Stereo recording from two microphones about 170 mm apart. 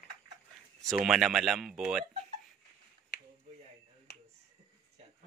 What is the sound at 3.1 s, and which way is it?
Finger snapping, 85° left.